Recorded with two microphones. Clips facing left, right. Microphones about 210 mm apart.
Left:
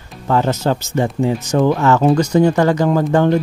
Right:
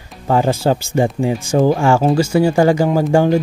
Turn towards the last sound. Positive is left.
turn(degrees=-10)  # may be behind; listen again after turning